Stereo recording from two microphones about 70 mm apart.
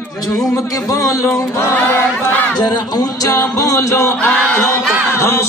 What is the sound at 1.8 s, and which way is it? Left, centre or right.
Speech, left.